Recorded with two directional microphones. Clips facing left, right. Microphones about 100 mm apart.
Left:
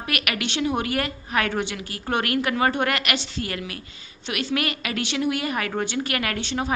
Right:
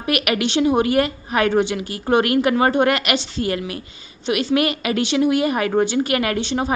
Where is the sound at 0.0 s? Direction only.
20° right (ahead or behind).